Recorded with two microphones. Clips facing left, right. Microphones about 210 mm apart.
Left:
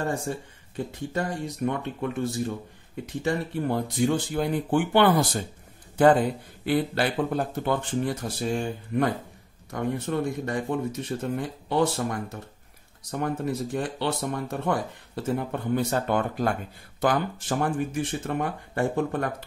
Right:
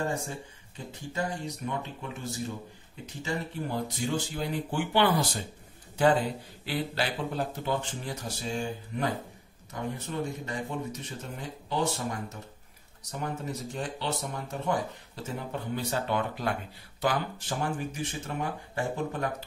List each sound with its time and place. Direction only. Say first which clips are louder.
0.7 s speech: left 5 dB; 60° left (ahead or behind)